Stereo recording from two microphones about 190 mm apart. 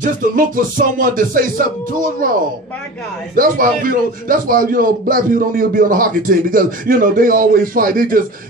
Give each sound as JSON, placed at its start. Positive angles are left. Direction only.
{"t": 0.0, "sound": "a man's voice", "side_deg": -45}